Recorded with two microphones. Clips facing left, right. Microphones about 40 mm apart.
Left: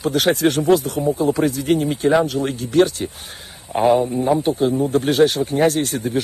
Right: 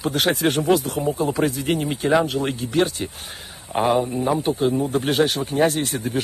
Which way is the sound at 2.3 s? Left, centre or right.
Right.